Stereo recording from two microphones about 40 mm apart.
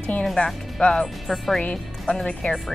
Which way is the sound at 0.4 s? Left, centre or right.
Left.